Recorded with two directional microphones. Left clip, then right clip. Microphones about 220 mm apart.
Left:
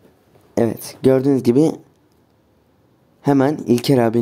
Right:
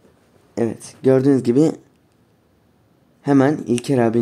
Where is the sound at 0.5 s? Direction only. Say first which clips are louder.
Left 4 dB; 15° left (ahead or behind).